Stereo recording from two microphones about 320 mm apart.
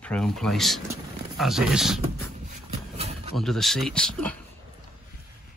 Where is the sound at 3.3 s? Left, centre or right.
Centre.